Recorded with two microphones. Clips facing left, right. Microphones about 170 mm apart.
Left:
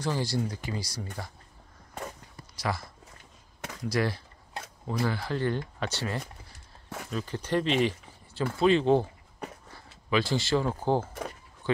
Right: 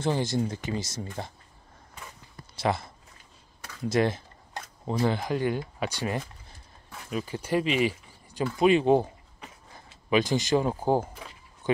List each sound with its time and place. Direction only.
0.0 s speech: 20° right (ahead or behind)
2.5 s speech: 25° right (ahead or behind)
3.9 s speech: 20° right (ahead or behind)
11.6 s a sound: 20° right (ahead or behind)